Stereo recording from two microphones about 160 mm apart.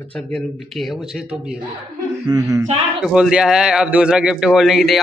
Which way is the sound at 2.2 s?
20° right (ahead or behind).